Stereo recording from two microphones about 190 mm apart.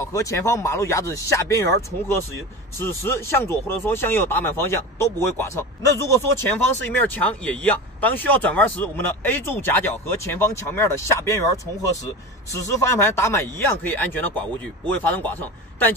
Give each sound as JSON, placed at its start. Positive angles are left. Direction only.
{"t": 0.0, "sound": "speech", "side_deg": 15}